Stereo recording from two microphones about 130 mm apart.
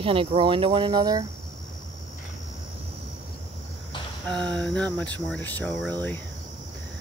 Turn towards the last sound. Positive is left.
turn(degrees=5)  # may be behind; listen again after turning